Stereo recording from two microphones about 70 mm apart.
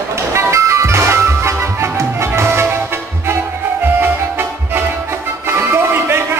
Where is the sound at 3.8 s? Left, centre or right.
Right.